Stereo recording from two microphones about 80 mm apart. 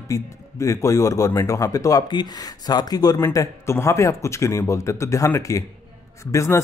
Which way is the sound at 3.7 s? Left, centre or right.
Left.